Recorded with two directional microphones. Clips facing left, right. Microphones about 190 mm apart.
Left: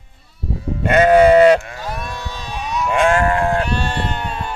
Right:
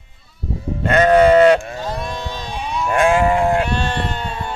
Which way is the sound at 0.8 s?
10° left (ahead or behind).